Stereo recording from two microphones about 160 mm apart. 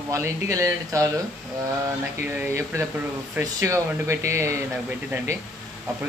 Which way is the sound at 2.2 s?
15° right (ahead or behind).